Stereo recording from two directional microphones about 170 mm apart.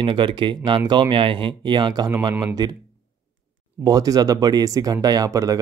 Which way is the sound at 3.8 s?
20° right (ahead or behind).